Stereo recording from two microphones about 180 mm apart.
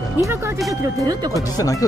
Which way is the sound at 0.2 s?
15° right (ahead or behind).